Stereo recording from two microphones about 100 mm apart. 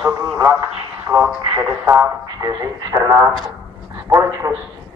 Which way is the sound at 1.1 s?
20° right (ahead or behind).